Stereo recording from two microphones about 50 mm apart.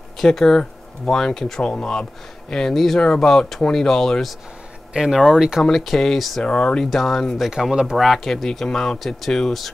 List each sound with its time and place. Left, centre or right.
0.2 s speech: centre
4.9 s speech: centre
5.6 s speech: centre
6.4 s speech: centre
7.3 s speech: centre